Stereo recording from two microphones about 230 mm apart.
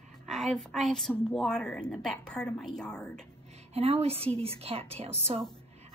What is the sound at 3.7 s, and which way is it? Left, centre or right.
A woman's voice, right.